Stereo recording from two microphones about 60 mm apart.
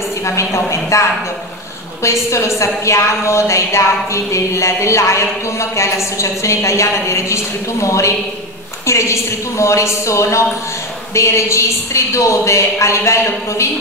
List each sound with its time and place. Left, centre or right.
0.2 s a woman's voice: left
2.0 s a woman's voice: left